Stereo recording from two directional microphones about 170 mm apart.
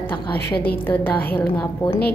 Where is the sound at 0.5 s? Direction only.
70° left (ahead or behind).